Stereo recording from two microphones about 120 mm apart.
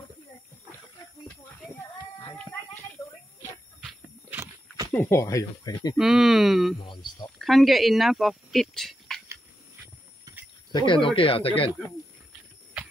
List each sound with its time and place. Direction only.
1.8 s child singing: 20° left (ahead or behind)
5.0 s speech: 25° left (ahead or behind)
5.9 s speech: 5° right (ahead or behind)
6.8 s speech: 35° left (ahead or behind)
7.3 s speech: centre (ahead or behind)
10.3 s cricket: 30° right (ahead or behind)
10.7 s speech: 40° left (ahead or behind)